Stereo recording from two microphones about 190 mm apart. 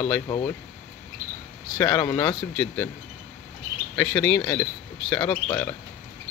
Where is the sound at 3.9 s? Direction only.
10° left (ahead or behind).